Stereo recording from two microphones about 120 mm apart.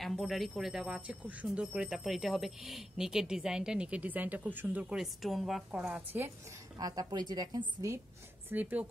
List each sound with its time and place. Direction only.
0.0 s a woman's voice: centre (ahead or behind)
6.8 s a woman's voice: 30° right (ahead or behind)
8.5 s a woman's voice: 15° right (ahead or behind)